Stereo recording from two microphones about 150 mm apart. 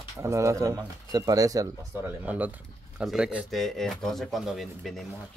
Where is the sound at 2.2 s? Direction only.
10° right (ahead or behind).